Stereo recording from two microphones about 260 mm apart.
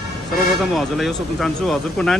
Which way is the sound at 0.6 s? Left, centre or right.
Centre.